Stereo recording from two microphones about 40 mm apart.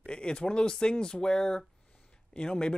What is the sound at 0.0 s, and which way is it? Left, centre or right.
Speech, left.